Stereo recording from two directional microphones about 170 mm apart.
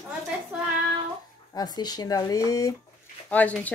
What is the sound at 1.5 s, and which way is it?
Speech, 25° left (ahead or behind).